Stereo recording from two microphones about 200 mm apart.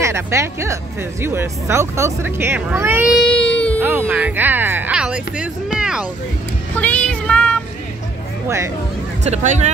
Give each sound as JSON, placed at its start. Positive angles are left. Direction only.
{"t": 0.0, "sound": "speech", "side_deg": -15}
{"t": 3.8, "sound": "speech", "side_deg": -10}
{"t": 6.8, "sound": "child singing", "side_deg": 5}
{"t": 8.5, "sound": "speech", "side_deg": -15}
{"t": 9.2, "sound": "speech", "side_deg": -35}